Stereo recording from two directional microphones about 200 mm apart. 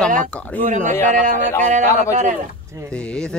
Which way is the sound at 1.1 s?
40° right (ahead or behind).